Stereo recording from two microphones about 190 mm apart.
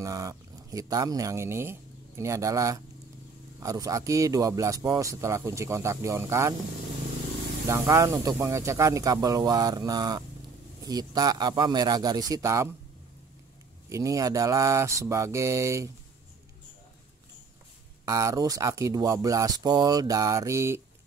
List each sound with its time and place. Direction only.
0.0 s a man's voice: 15° right (ahead or behind)
7.6 s speech: 15° right (ahead or behind)
13.8 s a man's voice: 15° right (ahead or behind)
18.0 s a man's voice: 15° right (ahead or behind)